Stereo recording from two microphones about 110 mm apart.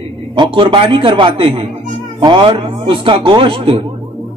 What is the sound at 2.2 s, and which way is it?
A woman's voice, 45° right (ahead or behind).